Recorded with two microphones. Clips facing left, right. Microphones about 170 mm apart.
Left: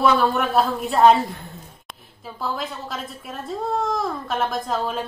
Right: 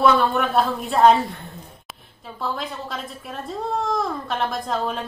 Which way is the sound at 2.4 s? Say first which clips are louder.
Even; centre (ahead or behind).